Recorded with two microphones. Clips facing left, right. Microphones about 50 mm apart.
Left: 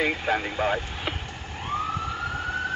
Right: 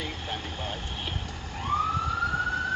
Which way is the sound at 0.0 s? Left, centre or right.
Left.